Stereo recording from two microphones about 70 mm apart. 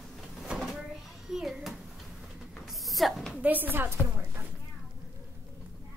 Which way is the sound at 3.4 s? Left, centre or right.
Right.